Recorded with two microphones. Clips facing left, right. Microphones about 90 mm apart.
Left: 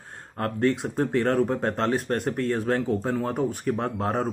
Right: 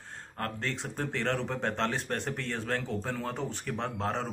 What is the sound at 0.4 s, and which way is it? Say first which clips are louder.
Speech: left 11 dB; 15° left (ahead or behind).